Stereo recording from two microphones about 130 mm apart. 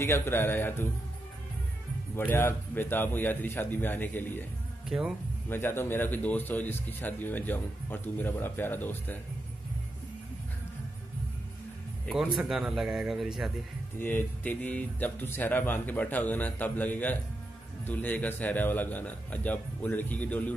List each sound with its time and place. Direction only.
0.0 s speech: 20° left (ahead or behind)
2.1 s speech: 15° left (ahead or behind)
4.8 s speech: 5° right (ahead or behind)
5.5 s speech: 15° left (ahead or behind)
12.4 s speech: 5° right (ahead or behind)
13.9 s speech: 15° left (ahead or behind)